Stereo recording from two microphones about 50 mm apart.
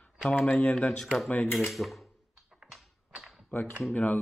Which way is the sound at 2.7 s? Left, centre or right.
Centre.